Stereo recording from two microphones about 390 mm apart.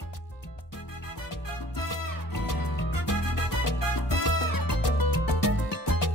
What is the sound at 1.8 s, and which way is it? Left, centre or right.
Music, left.